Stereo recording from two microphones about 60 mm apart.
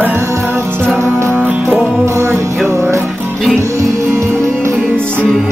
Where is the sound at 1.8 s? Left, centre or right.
Right.